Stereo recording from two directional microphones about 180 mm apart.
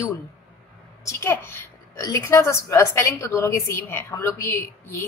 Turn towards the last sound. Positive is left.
turn(degrees=10)  # may be behind; listen again after turning